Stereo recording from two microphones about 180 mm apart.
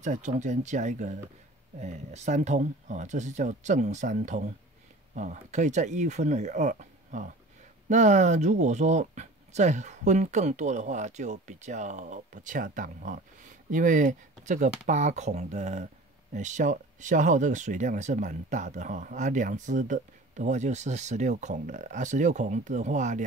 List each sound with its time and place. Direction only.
0.0 s speech: 40° right (ahead or behind)